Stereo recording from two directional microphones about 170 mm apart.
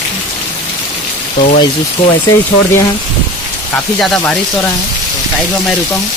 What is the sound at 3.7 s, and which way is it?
Speech, 5° left (ahead or behind).